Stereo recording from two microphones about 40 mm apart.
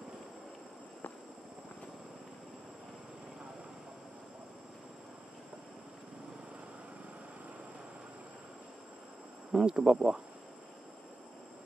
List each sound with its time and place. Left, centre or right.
9.5 s speech: centre